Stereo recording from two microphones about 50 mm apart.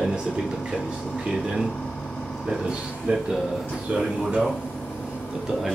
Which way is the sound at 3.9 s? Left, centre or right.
Centre.